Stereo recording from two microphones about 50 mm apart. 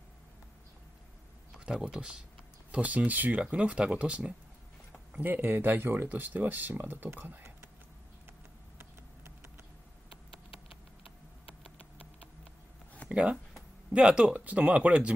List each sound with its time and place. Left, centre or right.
1.5 s speech: centre
2.7 s speech: right
5.2 s speech: right
6.0 s speech: right
7.2 s typing: right
8.7 s a sound: right
13.1 s speech: right
14.3 s speech: right